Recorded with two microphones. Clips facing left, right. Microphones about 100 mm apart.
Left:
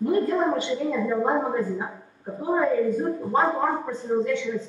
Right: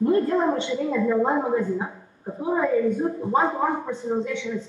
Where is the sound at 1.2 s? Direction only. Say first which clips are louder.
Right 1 dB; 20° right (ahead or behind).